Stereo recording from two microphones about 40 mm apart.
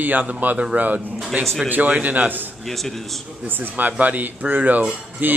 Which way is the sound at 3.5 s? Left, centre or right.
Right.